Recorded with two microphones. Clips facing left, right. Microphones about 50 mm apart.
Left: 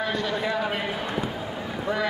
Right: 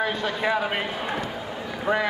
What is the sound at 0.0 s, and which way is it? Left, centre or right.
A man's voice, right.